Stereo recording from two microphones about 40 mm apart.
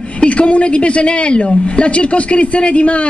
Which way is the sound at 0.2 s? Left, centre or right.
Left.